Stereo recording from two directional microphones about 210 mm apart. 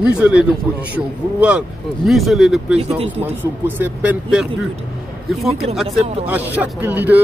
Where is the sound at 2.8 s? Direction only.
30° right (ahead or behind).